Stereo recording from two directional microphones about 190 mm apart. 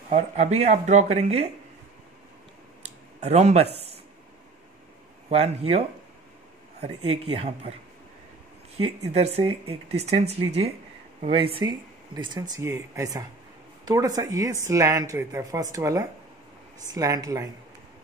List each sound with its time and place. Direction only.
0.6 s speech: 35° right (ahead or behind)
2.8 s a sound: 35° right (ahead or behind)
5.3 s speech: 35° right (ahead or behind)
8.8 s speech: 30° right (ahead or behind)